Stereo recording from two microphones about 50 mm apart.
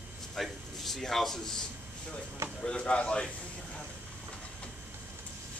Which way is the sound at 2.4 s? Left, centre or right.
Right.